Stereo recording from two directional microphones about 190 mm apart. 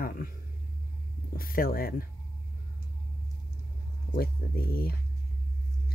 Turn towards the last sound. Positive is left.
turn(degrees=50)  # may be behind; listen again after turning